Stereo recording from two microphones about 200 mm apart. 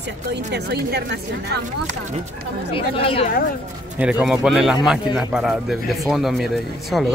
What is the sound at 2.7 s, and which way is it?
Speech, 30° left (ahead or behind).